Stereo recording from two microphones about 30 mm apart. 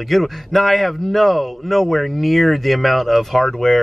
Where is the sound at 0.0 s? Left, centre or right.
Centre.